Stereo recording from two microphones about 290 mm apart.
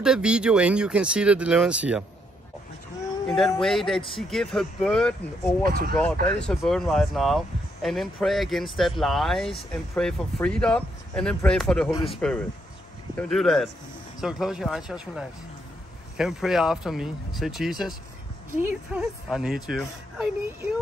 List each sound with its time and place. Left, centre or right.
0.0 s speech: centre
3.3 s speech: centre
5.6 s speech: right
6.4 s speech: centre